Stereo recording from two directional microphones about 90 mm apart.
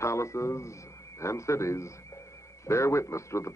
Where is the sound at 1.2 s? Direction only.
35° left (ahead or behind).